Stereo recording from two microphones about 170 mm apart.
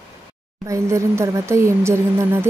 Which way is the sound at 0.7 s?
15° right (ahead or behind).